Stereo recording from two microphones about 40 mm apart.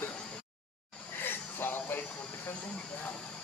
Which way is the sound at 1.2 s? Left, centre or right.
Left.